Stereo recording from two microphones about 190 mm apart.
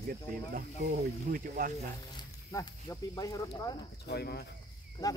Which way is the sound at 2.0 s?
20° left (ahead or behind).